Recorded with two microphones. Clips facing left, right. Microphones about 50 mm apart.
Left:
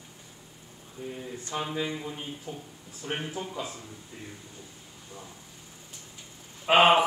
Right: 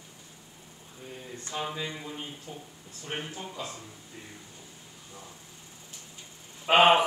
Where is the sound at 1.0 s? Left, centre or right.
Centre.